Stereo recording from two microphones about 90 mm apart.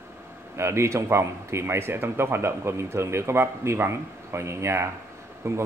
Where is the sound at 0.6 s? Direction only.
30° right (ahead or behind).